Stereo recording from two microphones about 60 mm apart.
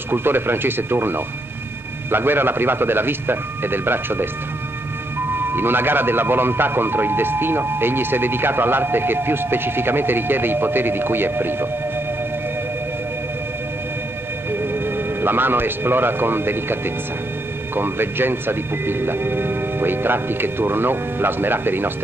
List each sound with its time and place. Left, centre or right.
0.1 s speech: right
5.5 s speech: right
14.5 s speech: right
17.7 s speech: right